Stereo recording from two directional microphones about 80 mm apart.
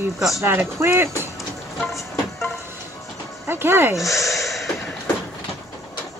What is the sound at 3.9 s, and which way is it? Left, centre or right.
Speech, left.